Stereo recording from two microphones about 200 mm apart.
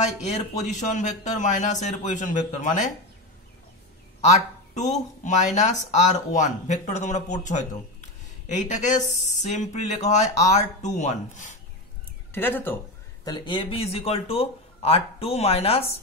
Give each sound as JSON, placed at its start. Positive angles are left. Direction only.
{"t": 0.6, "sound": "speech", "side_deg": 35}
{"t": 4.7, "sound": "speech", "side_deg": 35}
{"t": 12.3, "sound": "speech", "side_deg": 10}
{"t": 13.2, "sound": "speech", "side_deg": 20}